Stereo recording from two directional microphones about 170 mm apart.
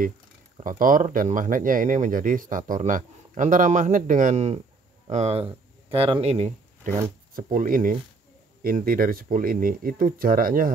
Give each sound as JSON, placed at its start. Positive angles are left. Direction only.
{"t": 0.7, "sound": "speech", "side_deg": -55}